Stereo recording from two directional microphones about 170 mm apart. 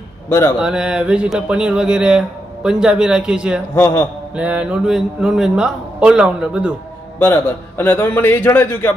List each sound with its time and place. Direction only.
0.3 s a man's voice: 15° left (ahead or behind)
0.6 s speech: 5° right (ahead or behind)
3.7 s a man's voice: 15° left (ahead or behind)
4.4 s speech: 10° right (ahead or behind)
7.2 s a man's voice: 10° left (ahead or behind)